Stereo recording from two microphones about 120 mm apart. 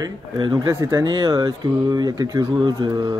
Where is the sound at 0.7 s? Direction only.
20° right (ahead or behind).